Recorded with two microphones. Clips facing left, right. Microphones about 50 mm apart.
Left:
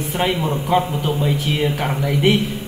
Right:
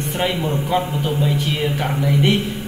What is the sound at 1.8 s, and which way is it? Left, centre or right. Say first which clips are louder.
Speech: right 2 dB; centre.